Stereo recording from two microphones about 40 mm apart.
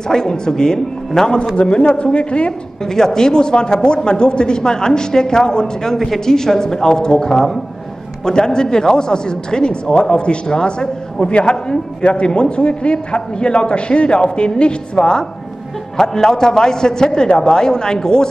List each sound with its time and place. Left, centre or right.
0.1 s speech: centre
1.6 s a man's voice: left
2.8 s a man's voice: centre